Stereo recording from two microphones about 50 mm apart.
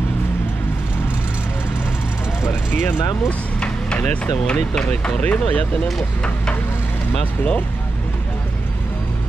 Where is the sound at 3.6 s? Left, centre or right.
Left.